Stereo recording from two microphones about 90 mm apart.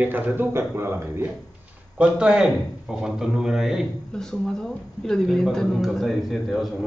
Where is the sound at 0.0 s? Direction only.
20° right (ahead or behind).